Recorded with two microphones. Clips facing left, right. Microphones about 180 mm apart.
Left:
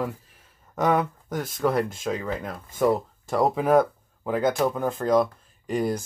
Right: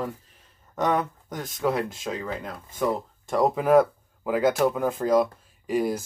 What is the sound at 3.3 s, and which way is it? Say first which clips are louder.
Speech: even; centre (ahead or behind).